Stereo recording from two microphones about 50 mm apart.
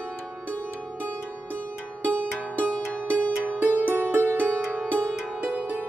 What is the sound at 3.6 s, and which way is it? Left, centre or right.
Music, right.